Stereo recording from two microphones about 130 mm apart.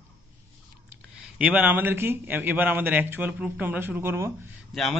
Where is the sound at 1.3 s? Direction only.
10° right (ahead or behind).